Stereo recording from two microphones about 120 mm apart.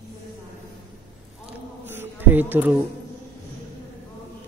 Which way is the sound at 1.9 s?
15° right (ahead or behind).